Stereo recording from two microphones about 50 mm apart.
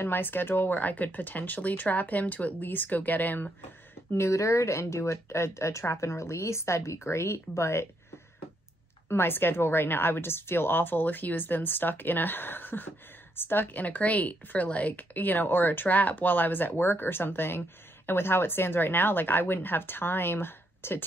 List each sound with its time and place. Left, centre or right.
0.0 s speech: left
4.3 s speech: left
9.1 s a woman's voice: left